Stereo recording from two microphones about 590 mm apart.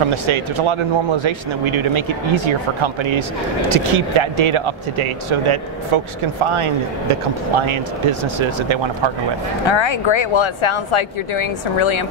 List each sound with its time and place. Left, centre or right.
0.1 s speech: right
9.7 s speech: left